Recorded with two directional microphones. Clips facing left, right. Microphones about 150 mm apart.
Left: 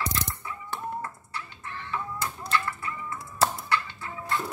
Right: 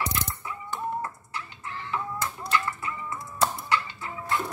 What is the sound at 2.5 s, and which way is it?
Music, 15° right (ahead or behind).